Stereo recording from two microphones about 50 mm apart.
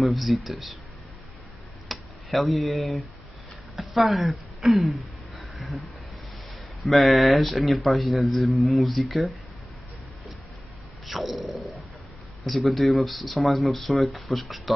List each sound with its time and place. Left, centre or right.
0.0 s speech: centre
1.9 s a sound: centre
3.7 s speech: centre
4.7 s a sound: centre
6.9 s speech: centre
11.1 s speech: centre